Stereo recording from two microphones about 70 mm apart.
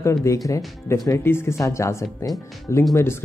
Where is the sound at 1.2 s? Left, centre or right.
Left.